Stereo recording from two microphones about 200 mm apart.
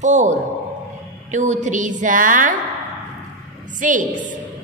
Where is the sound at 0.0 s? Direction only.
35° right (ahead or behind).